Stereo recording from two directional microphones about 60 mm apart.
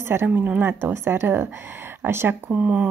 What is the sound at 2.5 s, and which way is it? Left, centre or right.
Speech, right.